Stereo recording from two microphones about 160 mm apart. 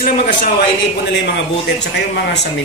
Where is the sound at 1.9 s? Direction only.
90° left.